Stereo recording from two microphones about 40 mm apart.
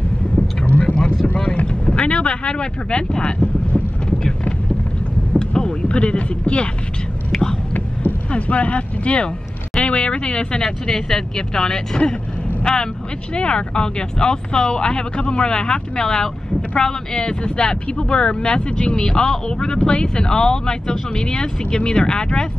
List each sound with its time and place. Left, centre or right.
0.4 s vehicle: left
1.2 s boat: left
5.6 s speech: left
7.3 s whispering: centre
8.3 s speech: left